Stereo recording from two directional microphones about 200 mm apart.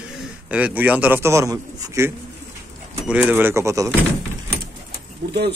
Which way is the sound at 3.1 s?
10° right (ahead or behind).